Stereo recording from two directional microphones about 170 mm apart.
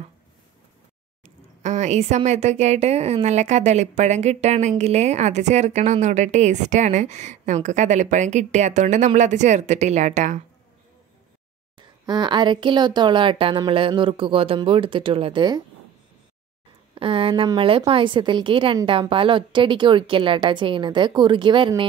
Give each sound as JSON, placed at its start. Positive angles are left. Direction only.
{"t": 1.6, "sound": "a woman's voice", "side_deg": -45}
{"t": 12.1, "sound": "a woman's voice", "side_deg": -25}
{"t": 16.9, "sound": "a woman's voice", "side_deg": -30}